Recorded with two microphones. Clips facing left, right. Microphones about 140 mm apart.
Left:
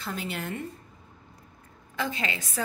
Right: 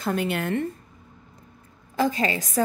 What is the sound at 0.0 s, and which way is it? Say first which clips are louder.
Speech: right 8 dB; 60° right (ahead or behind).